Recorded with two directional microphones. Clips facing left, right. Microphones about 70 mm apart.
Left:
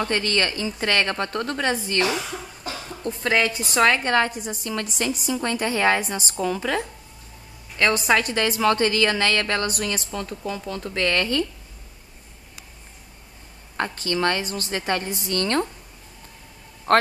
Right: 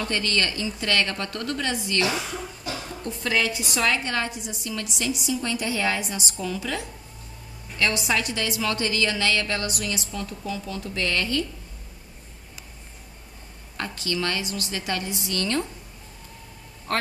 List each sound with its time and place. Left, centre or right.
0.0 s a woman's voice: left
13.7 s a woman's voice: left